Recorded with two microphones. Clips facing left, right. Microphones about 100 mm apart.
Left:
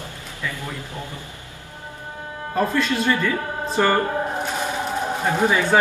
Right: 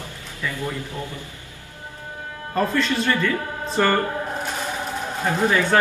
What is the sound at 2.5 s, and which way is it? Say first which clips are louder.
Speech: even; 10° left (ahead or behind).